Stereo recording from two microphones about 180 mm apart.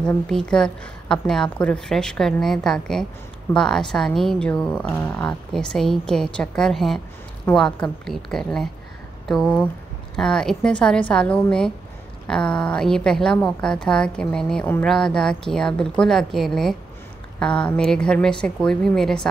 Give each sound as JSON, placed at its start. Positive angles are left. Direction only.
{"t": 0.0, "sound": "a woman's voice", "side_deg": 5}